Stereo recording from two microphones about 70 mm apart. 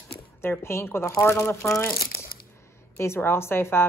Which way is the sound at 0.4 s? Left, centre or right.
Left.